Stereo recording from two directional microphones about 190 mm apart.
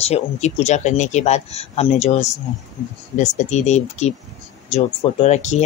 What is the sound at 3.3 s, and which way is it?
Speech, 35° left (ahead or behind).